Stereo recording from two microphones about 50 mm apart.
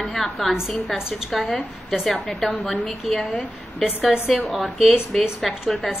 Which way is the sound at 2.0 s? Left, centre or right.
Centre.